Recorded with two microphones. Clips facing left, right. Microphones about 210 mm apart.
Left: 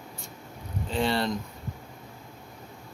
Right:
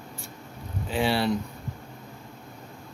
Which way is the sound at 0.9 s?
5° right (ahead or behind).